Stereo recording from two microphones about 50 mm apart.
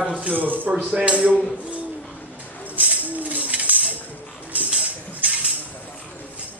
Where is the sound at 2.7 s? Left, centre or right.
Right.